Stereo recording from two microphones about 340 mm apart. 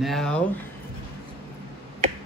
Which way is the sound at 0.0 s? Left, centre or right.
Centre.